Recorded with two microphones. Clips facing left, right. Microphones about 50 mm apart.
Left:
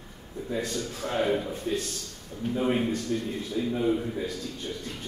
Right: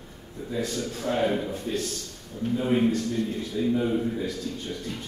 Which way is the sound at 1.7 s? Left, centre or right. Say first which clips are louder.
Left 1 dB; centre.